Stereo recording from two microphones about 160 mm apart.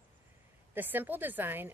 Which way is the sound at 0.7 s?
10° right (ahead or behind).